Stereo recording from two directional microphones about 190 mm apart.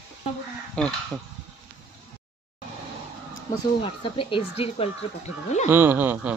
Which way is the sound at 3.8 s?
25° left (ahead or behind).